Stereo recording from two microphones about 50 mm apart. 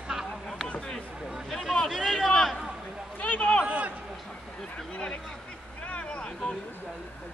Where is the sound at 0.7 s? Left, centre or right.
Centre.